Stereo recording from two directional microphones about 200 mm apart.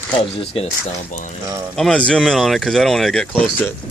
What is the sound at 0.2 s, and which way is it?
Speech, 30° left (ahead or behind).